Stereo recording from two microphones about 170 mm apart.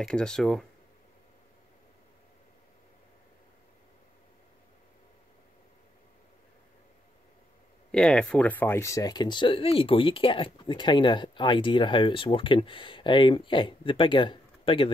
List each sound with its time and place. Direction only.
0.0 s speech: 5° left (ahead or behind)
7.9 s speech: 5° left (ahead or behind); by 14.9 s 30° left (ahead or behind)